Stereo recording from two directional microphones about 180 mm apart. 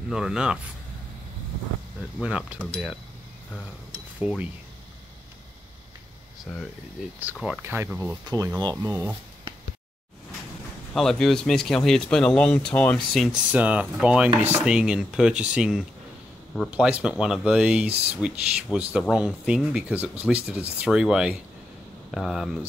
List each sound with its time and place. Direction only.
0.1 s speech: 5° right (ahead or behind)
2.1 s speech: 5° right (ahead or behind)
4.2 s speech: 5° right (ahead or behind)
7.2 s speech: 10° right (ahead or behind)
10.9 s speech: 5° left (ahead or behind)